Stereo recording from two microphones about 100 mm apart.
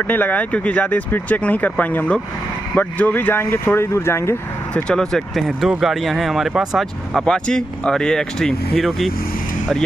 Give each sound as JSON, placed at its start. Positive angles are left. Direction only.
{"t": 0.0, "sound": "speech", "side_deg": 15}
{"t": 4.8, "sound": "speech", "side_deg": 5}